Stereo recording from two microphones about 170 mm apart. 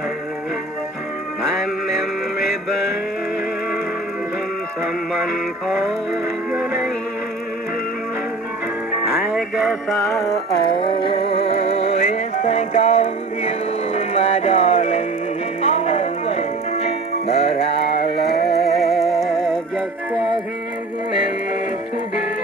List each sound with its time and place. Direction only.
10.7 s music: 30° left (ahead or behind)
18.5 s music: centre (ahead or behind)